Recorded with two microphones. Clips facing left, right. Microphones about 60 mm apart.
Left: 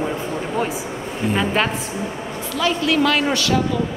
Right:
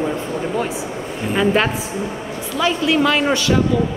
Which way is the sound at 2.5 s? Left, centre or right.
Right.